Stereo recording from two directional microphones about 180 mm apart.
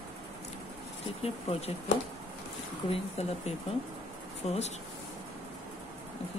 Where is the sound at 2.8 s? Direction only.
35° left (ahead or behind).